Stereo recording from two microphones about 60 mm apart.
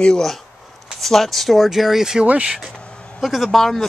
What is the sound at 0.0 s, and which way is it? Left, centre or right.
Speech, centre.